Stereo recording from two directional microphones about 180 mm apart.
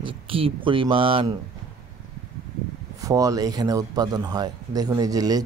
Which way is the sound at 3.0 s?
20° right (ahead or behind).